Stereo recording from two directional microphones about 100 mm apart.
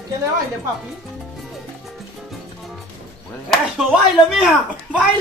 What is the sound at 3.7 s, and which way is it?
Speech, 5° right (ahead or behind).